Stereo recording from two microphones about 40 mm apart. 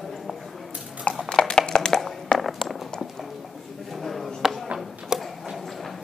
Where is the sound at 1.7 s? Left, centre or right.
Centre.